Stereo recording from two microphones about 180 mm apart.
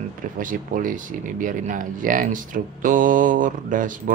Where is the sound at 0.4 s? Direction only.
50° right (ahead or behind).